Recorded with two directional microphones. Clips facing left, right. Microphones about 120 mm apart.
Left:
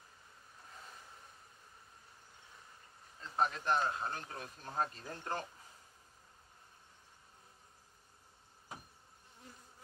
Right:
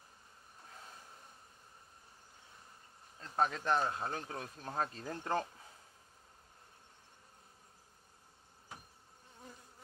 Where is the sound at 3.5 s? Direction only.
90° right.